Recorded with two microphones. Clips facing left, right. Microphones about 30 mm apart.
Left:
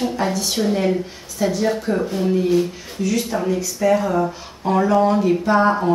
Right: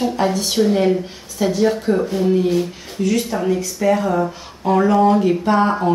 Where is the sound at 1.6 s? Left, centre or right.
Centre.